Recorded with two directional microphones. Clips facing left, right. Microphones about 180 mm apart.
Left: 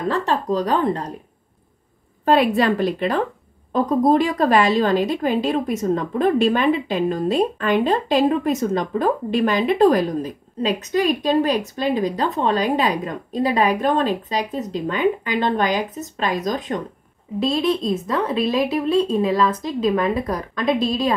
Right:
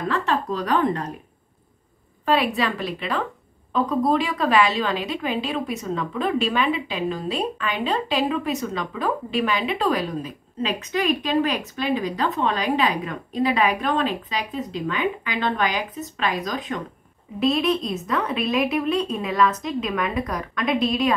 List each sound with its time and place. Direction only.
0.1 s a woman's voice: 35° left (ahead or behind)
2.2 s a woman's voice: 45° left (ahead or behind)
17.4 s a woman's voice: 30° left (ahead or behind)